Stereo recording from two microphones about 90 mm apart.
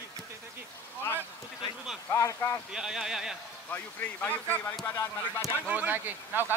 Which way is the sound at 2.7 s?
5° right (ahead or behind).